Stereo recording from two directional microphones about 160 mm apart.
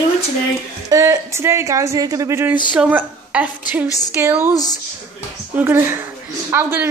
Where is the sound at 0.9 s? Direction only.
20° right (ahead or behind).